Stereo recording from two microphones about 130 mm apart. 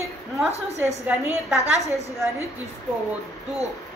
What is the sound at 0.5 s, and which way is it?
Speech, 55° right (ahead or behind).